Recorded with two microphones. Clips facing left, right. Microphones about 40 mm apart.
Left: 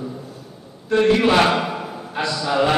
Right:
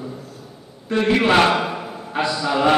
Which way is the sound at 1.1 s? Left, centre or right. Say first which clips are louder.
Right 1 dB; centre.